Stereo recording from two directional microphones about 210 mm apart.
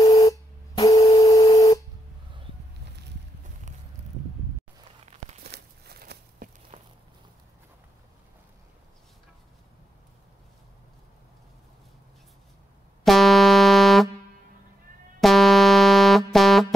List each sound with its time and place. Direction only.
0.0 s a sound: 15° left (ahead or behind)
5.0 s crumpling: 35° right (ahead or behind)
5.4 s a sound: 50° right (ahead or behind)
6.7 s walk: 25° right (ahead or behind)
13.0 s music: centre (ahead or behind)
15.1 s music: centre (ahead or behind)